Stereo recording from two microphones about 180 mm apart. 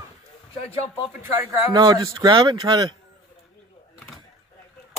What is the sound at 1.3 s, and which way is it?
Speech, 10° right (ahead or behind).